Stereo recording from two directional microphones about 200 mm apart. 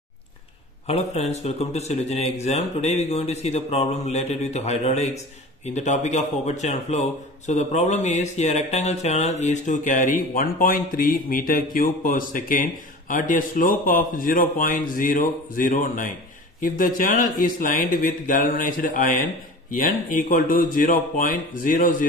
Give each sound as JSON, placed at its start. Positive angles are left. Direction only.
{"t": 0.8, "sound": "a man's voice", "side_deg": 30}